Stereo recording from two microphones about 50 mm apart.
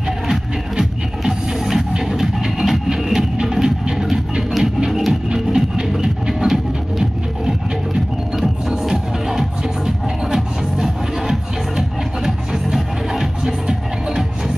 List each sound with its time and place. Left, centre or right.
0.3 s music: centre